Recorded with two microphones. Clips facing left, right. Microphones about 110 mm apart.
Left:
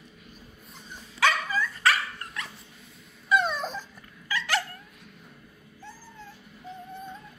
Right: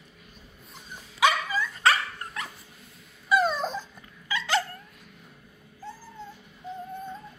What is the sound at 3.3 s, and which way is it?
Dog, centre (ahead or behind).